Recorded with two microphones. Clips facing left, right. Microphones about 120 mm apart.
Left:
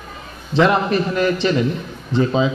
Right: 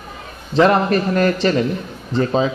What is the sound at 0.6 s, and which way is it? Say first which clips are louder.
A man's voice: right 2 dB; 45° right (ahead or behind).